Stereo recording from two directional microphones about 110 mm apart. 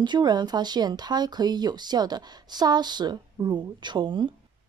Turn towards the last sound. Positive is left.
turn(degrees=-45)  # may be behind; listen again after turning